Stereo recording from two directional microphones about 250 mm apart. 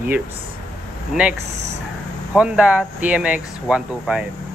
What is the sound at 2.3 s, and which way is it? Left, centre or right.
Speech, centre.